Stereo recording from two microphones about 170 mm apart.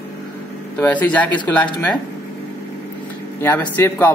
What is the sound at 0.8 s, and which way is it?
Speech, 10° left (ahead or behind).